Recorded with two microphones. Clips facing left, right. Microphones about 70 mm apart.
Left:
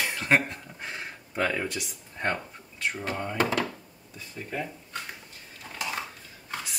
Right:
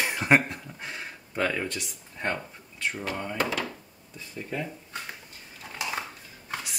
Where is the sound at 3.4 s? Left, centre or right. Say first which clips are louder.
Left 3 dB; left.